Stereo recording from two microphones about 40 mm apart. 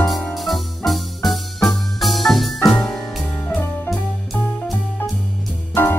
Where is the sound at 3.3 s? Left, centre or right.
Left.